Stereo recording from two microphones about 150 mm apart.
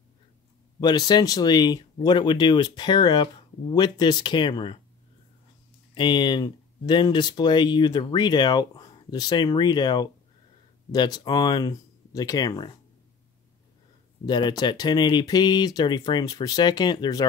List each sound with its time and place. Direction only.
0.7 s speech: 25° left (ahead or behind)
5.9 s speech: 30° left (ahead or behind)
14.2 s speech: 30° left (ahead or behind)